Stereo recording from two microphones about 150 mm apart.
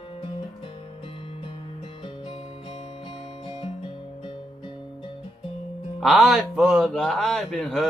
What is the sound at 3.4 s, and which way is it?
Music, 30° left (ahead or behind).